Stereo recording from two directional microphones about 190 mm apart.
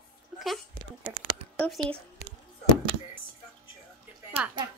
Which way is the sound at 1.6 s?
5° left (ahead or behind).